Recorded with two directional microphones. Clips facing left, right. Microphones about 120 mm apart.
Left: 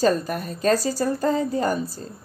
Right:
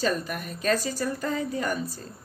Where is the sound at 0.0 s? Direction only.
35° left (ahead or behind).